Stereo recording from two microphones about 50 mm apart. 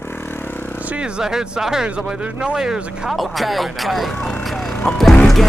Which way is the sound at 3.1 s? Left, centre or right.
Centre.